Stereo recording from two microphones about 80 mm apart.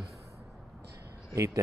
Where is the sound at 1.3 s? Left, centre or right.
Right.